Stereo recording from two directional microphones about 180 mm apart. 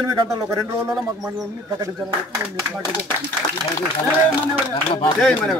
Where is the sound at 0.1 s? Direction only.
20° right (ahead or behind).